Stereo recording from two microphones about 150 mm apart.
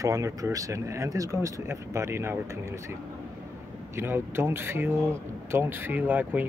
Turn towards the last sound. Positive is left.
turn(degrees=-10)  # may be behind; listen again after turning